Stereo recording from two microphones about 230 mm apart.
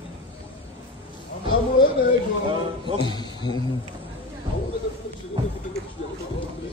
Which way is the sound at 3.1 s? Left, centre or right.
Centre.